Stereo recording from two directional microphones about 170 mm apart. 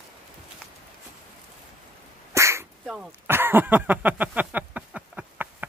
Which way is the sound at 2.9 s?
10° right (ahead or behind).